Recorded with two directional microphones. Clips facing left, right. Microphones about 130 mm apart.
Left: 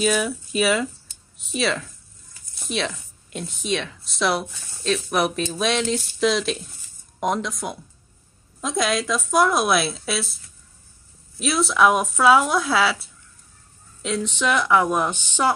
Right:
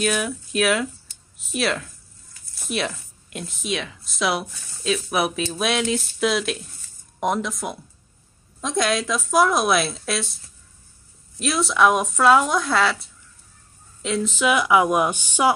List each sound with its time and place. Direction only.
0.0 s speech: centre (ahead or behind)